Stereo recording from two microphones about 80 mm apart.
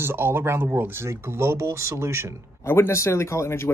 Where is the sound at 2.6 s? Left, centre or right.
Left.